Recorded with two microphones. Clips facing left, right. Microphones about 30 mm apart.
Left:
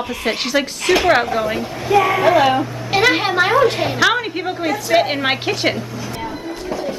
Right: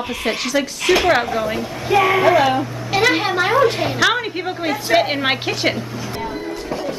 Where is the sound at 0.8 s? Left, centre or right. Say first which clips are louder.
Left 1 dB; centre.